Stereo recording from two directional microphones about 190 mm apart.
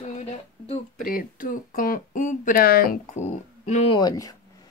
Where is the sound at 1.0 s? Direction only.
50° left (ahead or behind).